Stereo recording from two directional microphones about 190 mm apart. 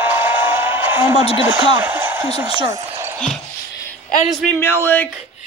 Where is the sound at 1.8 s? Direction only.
10° right (ahead or behind).